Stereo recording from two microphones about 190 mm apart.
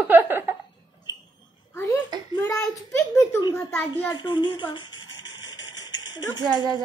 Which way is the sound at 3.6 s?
20° left (ahead or behind).